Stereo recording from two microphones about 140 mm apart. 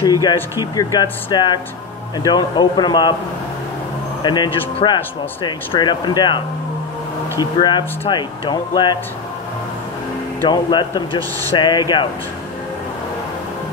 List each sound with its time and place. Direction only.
0.0 s speech: 30° left (ahead or behind)
4.2 s speech: 30° left (ahead or behind)
10.5 s speech: 30° left (ahead or behind)